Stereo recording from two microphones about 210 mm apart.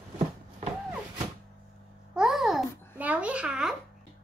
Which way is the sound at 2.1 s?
Centre (ahead or behind).